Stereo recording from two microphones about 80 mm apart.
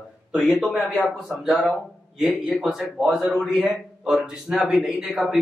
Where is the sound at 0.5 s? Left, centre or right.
Centre.